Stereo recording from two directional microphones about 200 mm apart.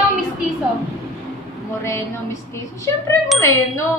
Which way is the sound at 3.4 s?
15° left (ahead or behind).